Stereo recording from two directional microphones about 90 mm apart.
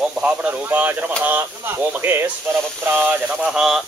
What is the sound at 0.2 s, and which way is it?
Speech, 15° right (ahead or behind).